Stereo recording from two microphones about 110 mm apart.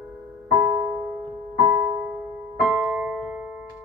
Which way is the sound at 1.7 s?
20° right (ahead or behind).